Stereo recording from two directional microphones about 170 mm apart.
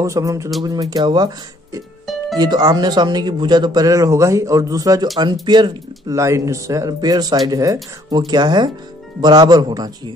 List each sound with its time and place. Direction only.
0.0 s speech: 20° right (ahead or behind)